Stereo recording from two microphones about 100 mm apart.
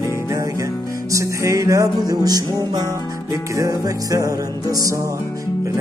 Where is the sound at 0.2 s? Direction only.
30° right (ahead or behind).